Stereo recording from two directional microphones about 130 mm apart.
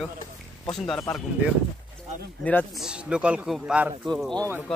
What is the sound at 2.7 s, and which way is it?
Speech, 5° right (ahead or behind).